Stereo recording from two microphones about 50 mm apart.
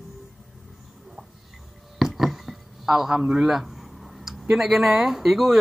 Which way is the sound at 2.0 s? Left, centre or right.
Centre.